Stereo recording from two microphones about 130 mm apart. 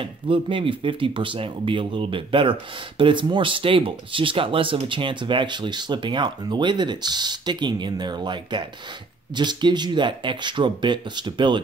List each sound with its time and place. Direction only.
0.0 s speech: 40° right (ahead or behind)